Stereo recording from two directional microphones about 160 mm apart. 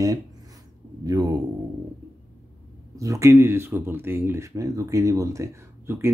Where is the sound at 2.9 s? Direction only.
20° right (ahead or behind).